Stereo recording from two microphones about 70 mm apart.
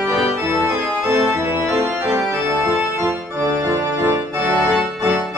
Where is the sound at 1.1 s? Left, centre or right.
Right.